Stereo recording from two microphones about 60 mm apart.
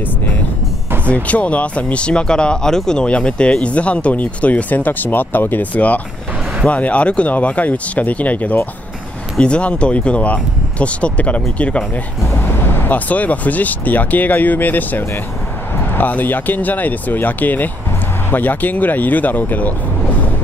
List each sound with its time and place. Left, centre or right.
1.0 s speech: left
12.4 s speech: left